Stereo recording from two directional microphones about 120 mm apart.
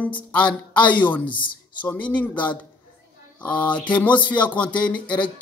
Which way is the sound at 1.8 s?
10° left (ahead or behind).